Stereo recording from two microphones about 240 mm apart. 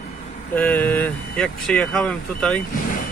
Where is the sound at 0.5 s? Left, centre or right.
Centre.